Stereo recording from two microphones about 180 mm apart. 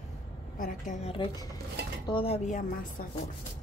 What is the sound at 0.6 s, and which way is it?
Speech, 45° left (ahead or behind).